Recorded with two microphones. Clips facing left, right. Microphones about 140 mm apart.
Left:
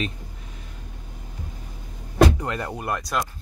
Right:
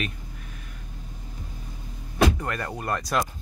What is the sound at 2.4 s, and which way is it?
Speech, 15° left (ahead or behind).